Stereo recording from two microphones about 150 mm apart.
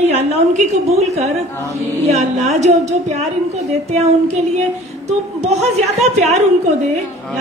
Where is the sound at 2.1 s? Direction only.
50° right (ahead or behind).